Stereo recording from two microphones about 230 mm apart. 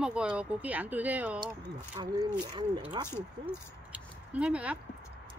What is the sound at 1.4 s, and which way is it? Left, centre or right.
Speech, centre.